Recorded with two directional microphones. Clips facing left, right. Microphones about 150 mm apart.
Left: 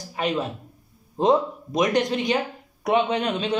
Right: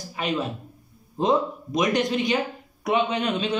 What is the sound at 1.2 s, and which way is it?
A man's voice, 35° left (ahead or behind).